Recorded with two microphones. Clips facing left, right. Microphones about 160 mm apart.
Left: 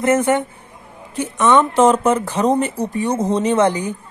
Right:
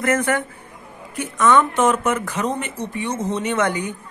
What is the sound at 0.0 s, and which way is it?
Speech, 25° left (ahead or behind).